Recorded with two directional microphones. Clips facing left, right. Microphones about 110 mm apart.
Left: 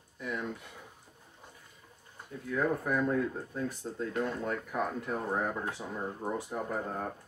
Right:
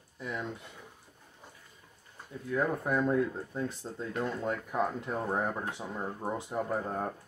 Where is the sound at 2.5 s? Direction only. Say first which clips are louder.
Even; 20° right (ahead or behind).